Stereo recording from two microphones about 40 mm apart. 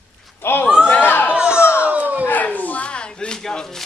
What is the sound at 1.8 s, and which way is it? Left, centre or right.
Crowd, right.